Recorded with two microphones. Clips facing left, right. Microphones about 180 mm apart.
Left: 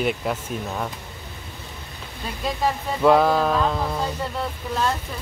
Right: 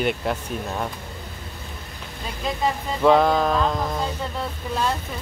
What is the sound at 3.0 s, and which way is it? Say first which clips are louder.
Speech: even; 5° left (ahead or behind).